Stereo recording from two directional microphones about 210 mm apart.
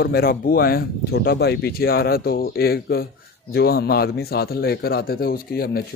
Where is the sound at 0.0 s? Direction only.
45° left (ahead or behind).